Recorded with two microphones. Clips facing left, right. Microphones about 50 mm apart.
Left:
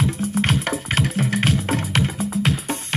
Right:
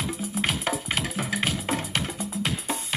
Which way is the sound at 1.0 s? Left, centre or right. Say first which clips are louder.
Left 6 dB; centre.